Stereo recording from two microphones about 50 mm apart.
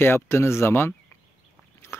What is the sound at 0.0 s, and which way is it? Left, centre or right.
Speech, left.